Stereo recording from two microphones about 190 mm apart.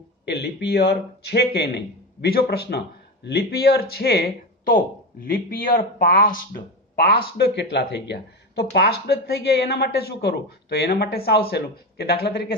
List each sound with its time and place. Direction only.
0.2 s speech: 60° left (ahead or behind)